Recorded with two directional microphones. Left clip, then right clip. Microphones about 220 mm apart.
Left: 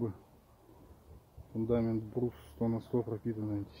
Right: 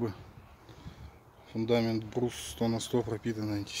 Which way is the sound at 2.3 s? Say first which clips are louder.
Right 4 dB; 5° right (ahead or behind).